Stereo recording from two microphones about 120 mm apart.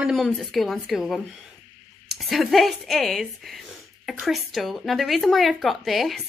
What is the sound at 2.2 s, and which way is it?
A woman's voice, centre (ahead or behind).